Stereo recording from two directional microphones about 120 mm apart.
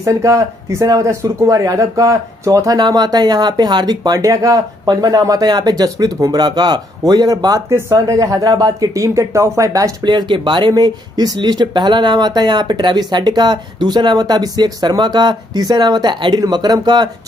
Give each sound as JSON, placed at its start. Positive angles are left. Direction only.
{"t": 0.0, "sound": "speech", "side_deg": -25}